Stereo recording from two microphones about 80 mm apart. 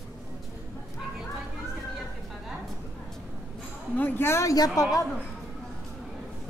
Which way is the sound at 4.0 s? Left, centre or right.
Left.